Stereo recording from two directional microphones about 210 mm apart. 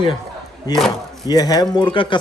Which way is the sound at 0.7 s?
20° left (ahead or behind).